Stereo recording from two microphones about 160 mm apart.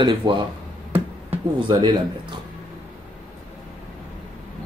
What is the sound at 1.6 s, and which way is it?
Speech, 30° right (ahead or behind).